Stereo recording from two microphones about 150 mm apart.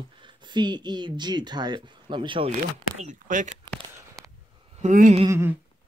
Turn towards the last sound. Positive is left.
turn(degrees=-20)  # may be behind; listen again after turning